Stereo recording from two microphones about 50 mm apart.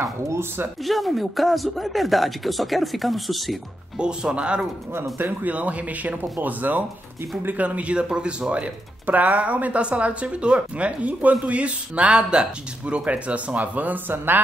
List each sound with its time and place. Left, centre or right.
0.3 s speech: right
0.8 s speech: centre
4.0 s speech: centre
5.2 s speech: right
9.0 s speech: right